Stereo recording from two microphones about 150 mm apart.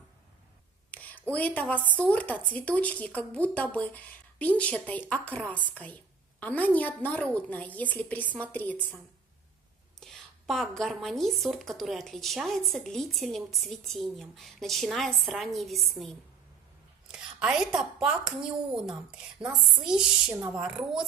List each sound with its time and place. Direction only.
0.9 s a sound: 10° left (ahead or behind)
1.9 s a woman's voice: 10° left (ahead or behind)
20.3 s speech: 20° right (ahead or behind)
20.6 s a woman's voice: 5° right (ahead or behind)